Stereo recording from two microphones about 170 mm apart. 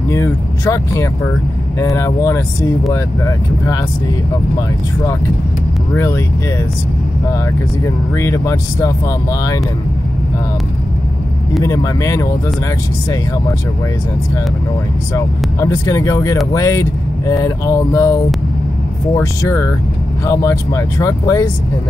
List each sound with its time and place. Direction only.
0.1 s speech: 15° left (ahead or behind)
5.9 s speech: 15° left (ahead or behind)
8.1 s speech: 15° left (ahead or behind)
11.6 s speech: 20° left (ahead or behind)
15.1 s speech: 20° left (ahead or behind)